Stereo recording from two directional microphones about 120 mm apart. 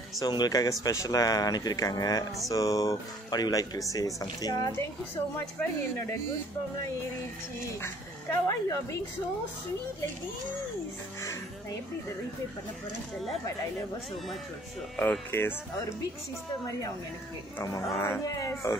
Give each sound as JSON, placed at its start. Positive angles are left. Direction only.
{"t": 0.2, "sound": "speech", "side_deg": 35}
{"t": 7.8, "sound": "speech", "side_deg": 25}
{"t": 15.0, "sound": "speech", "side_deg": 15}
{"t": 17.9, "sound": "speech", "side_deg": 20}